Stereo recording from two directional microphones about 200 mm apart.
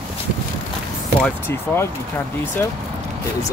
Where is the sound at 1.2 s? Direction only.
10° left (ahead or behind).